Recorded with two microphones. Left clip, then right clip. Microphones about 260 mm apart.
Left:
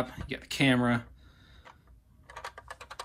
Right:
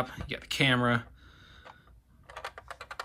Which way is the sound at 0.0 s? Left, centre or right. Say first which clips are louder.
Right 1 dB; centre.